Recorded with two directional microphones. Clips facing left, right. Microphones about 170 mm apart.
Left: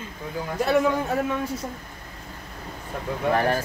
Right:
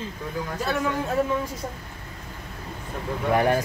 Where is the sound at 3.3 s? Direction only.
15° right (ahead or behind).